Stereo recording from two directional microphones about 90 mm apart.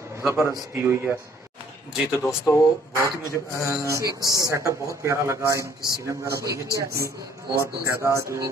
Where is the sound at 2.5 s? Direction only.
35° left (ahead or behind).